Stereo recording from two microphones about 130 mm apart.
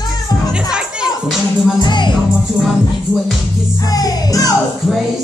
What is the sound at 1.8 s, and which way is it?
Music, 35° left (ahead or behind).